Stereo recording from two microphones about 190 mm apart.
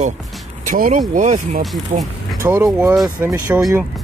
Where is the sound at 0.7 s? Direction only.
45° right (ahead or behind).